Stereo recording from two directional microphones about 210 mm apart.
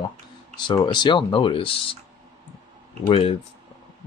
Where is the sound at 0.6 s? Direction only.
20° left (ahead or behind).